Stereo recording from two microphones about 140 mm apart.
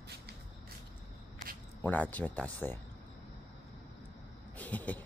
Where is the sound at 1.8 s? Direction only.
10° left (ahead or behind).